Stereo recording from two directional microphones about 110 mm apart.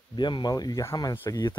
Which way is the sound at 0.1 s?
45° left (ahead or behind).